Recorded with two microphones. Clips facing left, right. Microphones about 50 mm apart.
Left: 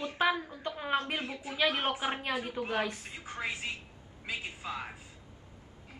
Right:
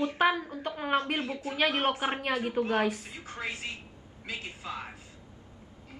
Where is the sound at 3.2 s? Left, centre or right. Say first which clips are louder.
Even; centre.